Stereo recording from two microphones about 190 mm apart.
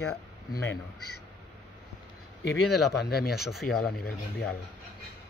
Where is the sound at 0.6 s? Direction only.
75° left (ahead or behind).